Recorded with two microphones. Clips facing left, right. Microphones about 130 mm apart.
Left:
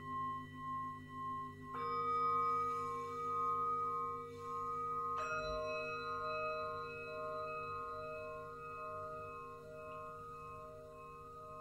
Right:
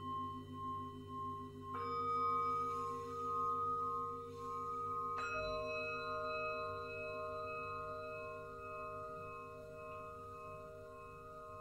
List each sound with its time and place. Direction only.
2.0 s singing bowl: 20° right (ahead or behind)
5.1 s music: 10° left (ahead or behind)